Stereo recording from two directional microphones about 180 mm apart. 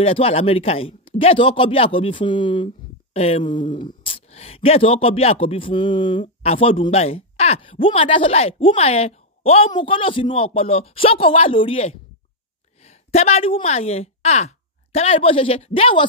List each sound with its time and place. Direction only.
0.0 s a man's voice: 35° left (ahead or behind)